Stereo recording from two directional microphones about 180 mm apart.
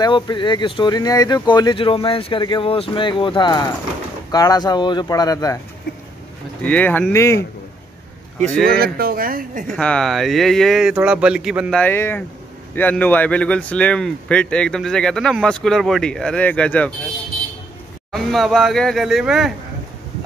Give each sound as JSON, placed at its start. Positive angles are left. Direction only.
{"t": 0.0, "sound": "speech", "side_deg": 25}
{"t": 6.6, "sound": "speech", "side_deg": 10}
{"t": 8.6, "sound": "speech", "side_deg": -60}
{"t": 9.8, "sound": "speech", "side_deg": 5}
{"t": 11.7, "sound": "speech", "side_deg": 10}
{"t": 18.1, "sound": "speech", "side_deg": 0}